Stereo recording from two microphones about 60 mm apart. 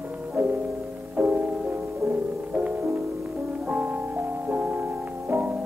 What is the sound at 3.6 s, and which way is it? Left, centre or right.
Music, right.